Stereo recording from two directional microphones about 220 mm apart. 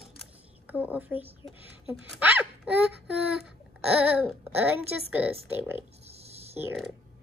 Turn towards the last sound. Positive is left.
turn(degrees=-5)  # may be behind; listen again after turning